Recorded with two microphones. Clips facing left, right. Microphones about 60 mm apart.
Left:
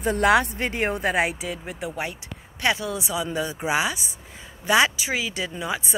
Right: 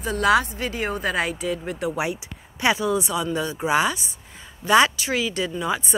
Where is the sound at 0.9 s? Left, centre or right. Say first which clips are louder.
Even; left.